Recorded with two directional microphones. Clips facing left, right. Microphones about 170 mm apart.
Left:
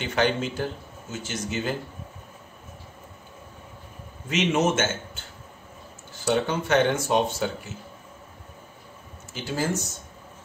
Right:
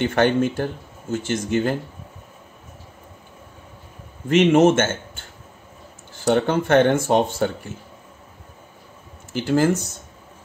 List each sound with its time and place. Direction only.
0.0 s speech: 55° right (ahead or behind)
4.3 s speech: 55° right (ahead or behind)
6.2 s speech: 55° right (ahead or behind)
9.3 s speech: 60° right (ahead or behind)